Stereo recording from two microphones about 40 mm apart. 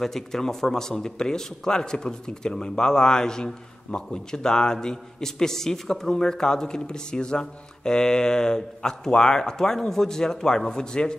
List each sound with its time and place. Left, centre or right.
0.0 s speech: centre